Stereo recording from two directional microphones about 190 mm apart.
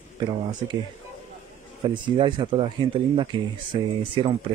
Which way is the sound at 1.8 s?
25° right (ahead or behind).